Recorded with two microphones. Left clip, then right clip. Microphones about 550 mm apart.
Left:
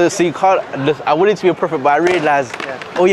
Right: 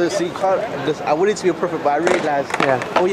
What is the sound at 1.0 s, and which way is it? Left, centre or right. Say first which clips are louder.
Speech: left 4 dB; left.